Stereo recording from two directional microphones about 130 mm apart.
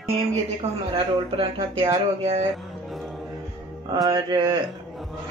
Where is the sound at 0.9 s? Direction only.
45° right (ahead or behind).